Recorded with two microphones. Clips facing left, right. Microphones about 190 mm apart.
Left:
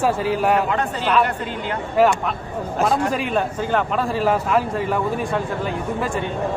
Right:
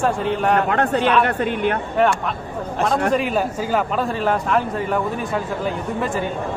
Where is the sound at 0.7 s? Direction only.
60° right (ahead or behind).